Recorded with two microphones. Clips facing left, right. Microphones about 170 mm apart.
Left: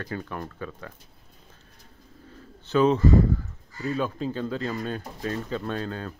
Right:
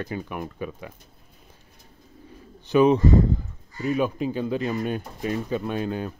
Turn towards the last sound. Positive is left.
turn(degrees=-15)  # may be behind; listen again after turning